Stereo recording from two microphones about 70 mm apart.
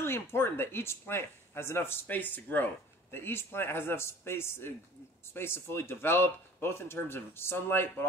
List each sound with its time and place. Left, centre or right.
0.0 s speech: left